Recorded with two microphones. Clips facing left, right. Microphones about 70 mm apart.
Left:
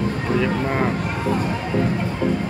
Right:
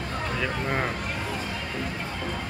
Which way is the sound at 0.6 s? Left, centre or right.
Centre.